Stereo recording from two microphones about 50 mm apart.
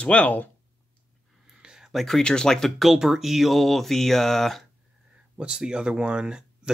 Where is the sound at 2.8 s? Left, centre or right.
Centre.